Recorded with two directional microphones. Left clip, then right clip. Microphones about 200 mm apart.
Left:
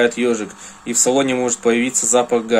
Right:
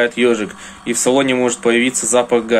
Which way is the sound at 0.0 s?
5° left (ahead or behind).